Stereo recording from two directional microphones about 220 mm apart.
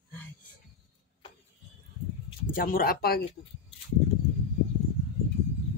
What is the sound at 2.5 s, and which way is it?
Speech, 40° left (ahead or behind).